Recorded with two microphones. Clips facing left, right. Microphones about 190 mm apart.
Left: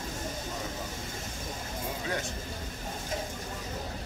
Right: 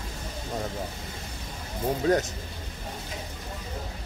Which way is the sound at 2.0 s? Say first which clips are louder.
Right 12 dB; 45° right (ahead or behind).